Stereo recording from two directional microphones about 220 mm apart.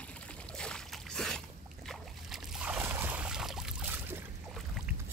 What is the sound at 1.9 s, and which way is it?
Boat, centre (ahead or behind).